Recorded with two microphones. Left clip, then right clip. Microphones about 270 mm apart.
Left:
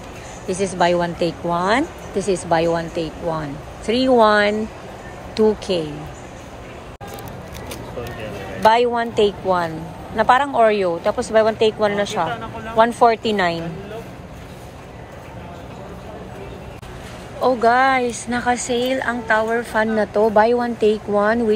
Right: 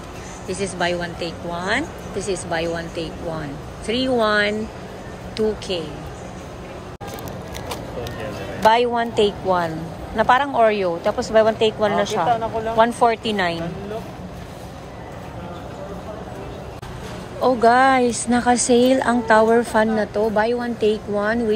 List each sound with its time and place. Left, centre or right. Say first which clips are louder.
0.5 s speech: left 5 dB; centre
8.6 s speech: left 1 dB; centre
12.3 s speech: right 7 dB; right
12.7 s speech: left 3 dB; centre
17.4 s speech: even; centre